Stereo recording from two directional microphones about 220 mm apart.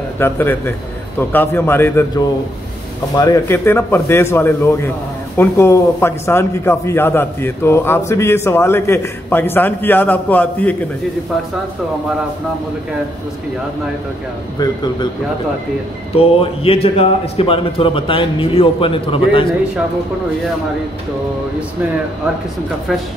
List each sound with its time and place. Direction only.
0.2 s a man's voice: 10° left (ahead or behind)
14.6 s a man's voice: 20° left (ahead or behind)
16.2 s a man's voice: 25° left (ahead or behind)